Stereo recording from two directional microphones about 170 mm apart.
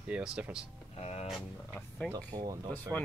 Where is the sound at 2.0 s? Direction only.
20° right (ahead or behind).